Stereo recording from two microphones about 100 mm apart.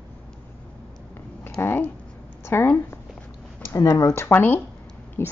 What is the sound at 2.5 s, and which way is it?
Speech, 25° left (ahead or behind).